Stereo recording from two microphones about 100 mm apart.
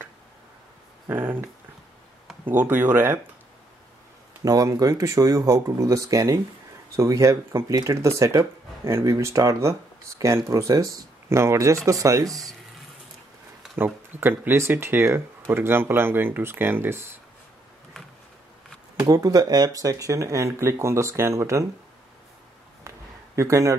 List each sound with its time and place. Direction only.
1.0 s speech: 20° right (ahead or behind)
4.5 s speech: 35° right (ahead or behind)
13.7 s speech: 20° right (ahead or behind)
18.9 s speech: 35° right (ahead or behind)
22.8 s a sound: 30° right (ahead or behind)